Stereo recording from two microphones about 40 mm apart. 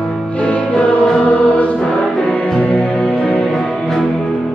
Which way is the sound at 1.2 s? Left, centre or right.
Left.